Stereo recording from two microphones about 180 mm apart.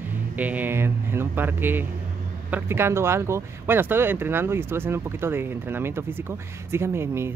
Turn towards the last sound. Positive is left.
turn(degrees=-15)  # may be behind; listen again after turning